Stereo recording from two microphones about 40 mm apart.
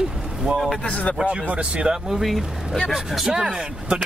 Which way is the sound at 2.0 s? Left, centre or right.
Centre.